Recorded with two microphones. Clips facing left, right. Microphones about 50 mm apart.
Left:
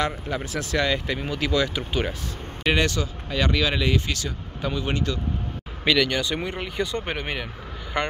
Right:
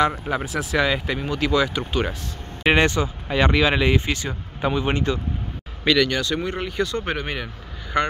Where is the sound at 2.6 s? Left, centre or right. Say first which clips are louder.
Right 5 dB; right.